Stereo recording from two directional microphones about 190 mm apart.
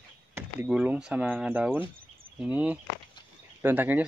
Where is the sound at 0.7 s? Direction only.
5° right (ahead or behind).